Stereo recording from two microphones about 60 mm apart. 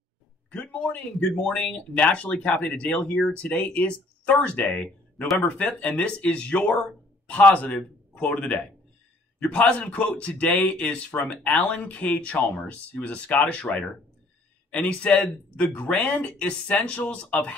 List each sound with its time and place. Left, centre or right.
0.5 s a man's voice: centre